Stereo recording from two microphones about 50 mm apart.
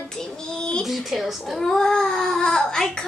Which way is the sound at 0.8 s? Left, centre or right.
Centre.